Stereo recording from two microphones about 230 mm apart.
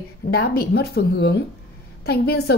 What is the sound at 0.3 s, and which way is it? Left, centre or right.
A woman's voice, left.